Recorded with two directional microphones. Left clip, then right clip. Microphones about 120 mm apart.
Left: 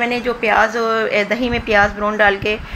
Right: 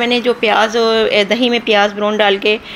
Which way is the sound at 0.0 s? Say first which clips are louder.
Right 4 dB; 55° right (ahead or behind).